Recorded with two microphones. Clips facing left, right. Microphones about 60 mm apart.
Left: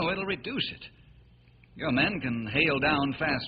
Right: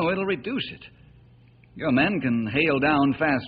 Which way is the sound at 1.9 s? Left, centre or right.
Centre.